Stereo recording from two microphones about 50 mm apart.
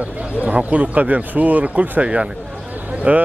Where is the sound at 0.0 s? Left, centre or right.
Right.